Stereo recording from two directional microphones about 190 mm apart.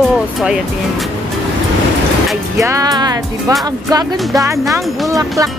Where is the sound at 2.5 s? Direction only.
15° right (ahead or behind).